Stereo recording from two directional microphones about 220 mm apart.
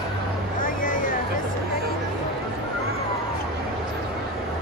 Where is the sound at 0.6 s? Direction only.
40° left (ahead or behind).